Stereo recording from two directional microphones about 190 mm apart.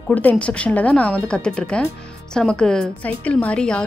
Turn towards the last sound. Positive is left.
turn(degrees=5)  # may be behind; listen again after turning